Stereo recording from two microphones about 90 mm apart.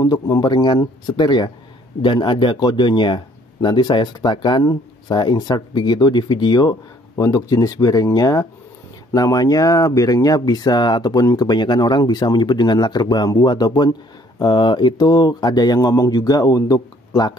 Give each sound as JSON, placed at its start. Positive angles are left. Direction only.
{"t": 0.0, "sound": "speech", "side_deg": 45}